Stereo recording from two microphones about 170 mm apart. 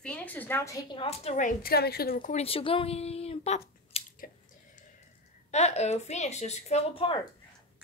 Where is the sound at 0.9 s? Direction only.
35° left (ahead or behind); by 2.3 s 60° left (ahead or behind).